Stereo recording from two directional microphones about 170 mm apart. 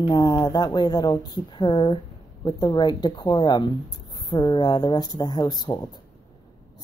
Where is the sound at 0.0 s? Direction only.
20° left (ahead or behind).